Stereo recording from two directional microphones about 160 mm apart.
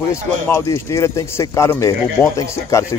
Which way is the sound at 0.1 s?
20° left (ahead or behind).